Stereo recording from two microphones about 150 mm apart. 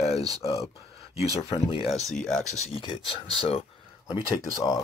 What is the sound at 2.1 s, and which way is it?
Speech, 5° left (ahead or behind).